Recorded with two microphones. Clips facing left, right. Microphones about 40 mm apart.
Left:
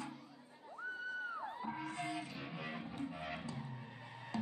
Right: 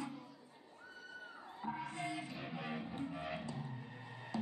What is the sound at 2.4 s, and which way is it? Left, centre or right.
Guitar, centre.